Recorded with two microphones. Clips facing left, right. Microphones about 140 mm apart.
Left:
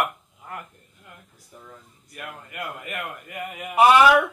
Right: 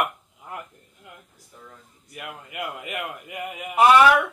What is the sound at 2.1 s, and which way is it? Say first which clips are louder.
A man's voice: right 1 dB; 10° right (ahead or behind).